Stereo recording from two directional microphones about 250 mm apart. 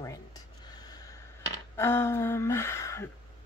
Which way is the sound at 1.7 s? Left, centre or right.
Centre.